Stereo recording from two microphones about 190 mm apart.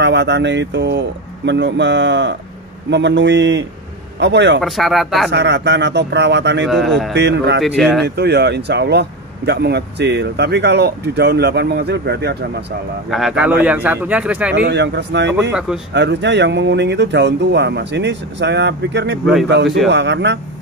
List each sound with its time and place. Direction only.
0.0 s speech: 65° right (ahead or behind)
4.6 s speech: centre (ahead or behind)
5.3 s speech: 65° right (ahead or behind)
7.6 s speech: centre (ahead or behind)
8.0 s speech: 60° right (ahead or behind)
13.1 s speech: 5° right (ahead or behind)
14.5 s speech: 65° right (ahead or behind)